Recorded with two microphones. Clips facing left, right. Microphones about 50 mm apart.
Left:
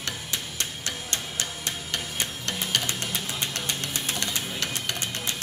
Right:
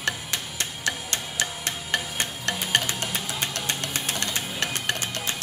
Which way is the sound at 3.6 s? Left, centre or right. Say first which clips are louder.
Right 2 dB; right.